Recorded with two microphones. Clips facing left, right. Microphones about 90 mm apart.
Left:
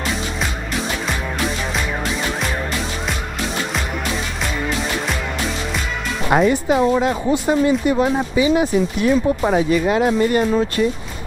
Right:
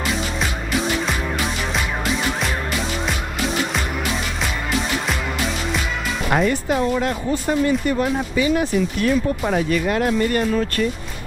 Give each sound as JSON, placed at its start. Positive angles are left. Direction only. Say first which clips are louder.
{"t": 6.3, "sound": "speech", "louder": "left 4 dB", "side_deg": 5}
{"t": 10.5, "sound": "speech", "louder": "left 3 dB", "side_deg": 20}